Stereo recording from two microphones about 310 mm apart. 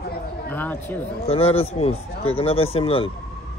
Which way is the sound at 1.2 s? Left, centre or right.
Centre.